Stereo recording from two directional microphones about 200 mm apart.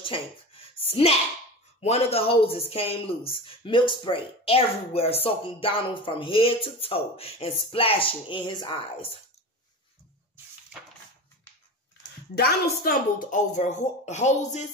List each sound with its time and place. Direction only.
0.0 s a sound: 25° left (ahead or behind)
1.8 s speech: 30° left (ahead or behind)
12.4 s speech: 50° left (ahead or behind)